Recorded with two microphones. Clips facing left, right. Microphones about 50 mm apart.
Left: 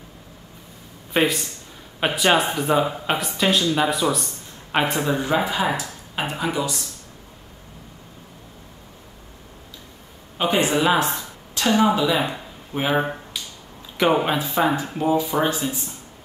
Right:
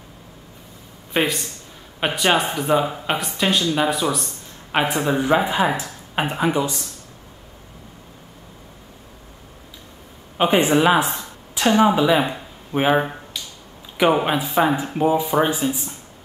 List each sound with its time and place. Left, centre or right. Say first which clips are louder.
1.1 s speech: left 1 dB; centre
5.0 s speech: right 3 dB; centre
10.3 s speech: right 4 dB; right
13.0 s finger snapping: left 1 dB; centre
13.9 s speech: right 1 dB; centre